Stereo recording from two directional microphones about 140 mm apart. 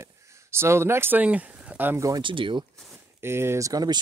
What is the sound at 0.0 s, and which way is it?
Speech, 20° right (ahead or behind).